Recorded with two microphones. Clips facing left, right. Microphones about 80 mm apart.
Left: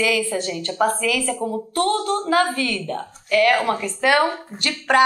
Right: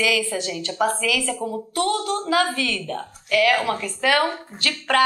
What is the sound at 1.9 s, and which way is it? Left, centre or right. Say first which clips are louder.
Speech: left 2 dB; centre.